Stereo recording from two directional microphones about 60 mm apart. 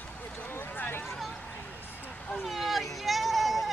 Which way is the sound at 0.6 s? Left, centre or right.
Left.